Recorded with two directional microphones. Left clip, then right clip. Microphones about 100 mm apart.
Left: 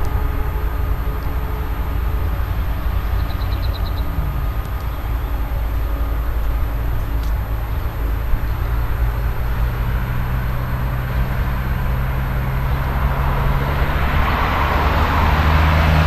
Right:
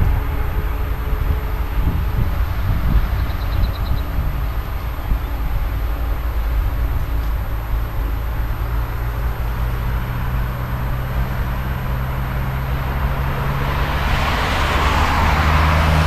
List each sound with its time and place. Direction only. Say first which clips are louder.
13.7 s vehicle: even; 35° right (ahead or behind)